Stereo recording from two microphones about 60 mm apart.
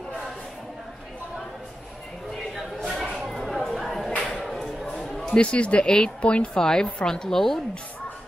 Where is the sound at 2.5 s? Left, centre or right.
Centre.